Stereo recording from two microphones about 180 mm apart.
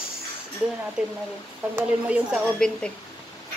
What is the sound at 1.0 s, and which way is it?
A woman's voice, 5° right (ahead or behind).